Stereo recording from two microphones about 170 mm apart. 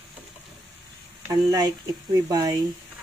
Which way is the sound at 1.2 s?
20° right (ahead or behind).